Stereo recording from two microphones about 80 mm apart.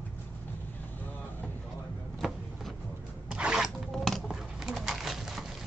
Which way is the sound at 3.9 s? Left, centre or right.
Centre.